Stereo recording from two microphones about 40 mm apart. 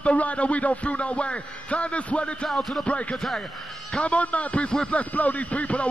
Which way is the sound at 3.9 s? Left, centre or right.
Left.